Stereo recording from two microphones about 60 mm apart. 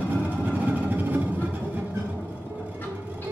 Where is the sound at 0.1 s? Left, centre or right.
Right.